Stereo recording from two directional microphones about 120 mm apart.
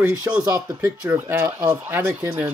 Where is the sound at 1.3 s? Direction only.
25° right (ahead or behind).